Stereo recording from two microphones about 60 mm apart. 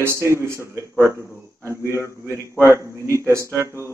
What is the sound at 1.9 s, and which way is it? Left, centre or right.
Speech, left.